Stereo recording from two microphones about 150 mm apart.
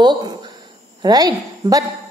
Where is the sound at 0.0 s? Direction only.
30° right (ahead or behind).